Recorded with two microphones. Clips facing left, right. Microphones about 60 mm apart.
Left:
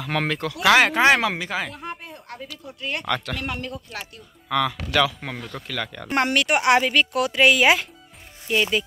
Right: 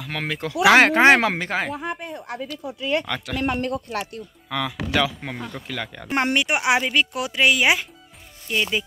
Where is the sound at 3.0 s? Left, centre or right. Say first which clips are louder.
Left 2 dB; centre.